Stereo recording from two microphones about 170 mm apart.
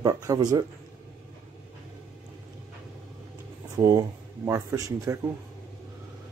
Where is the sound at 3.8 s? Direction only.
20° right (ahead or behind).